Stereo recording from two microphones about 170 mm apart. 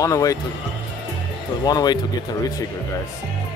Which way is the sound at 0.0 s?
20° left (ahead or behind).